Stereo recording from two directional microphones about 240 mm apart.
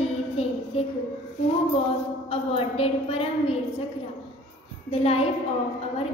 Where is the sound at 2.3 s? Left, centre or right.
Left.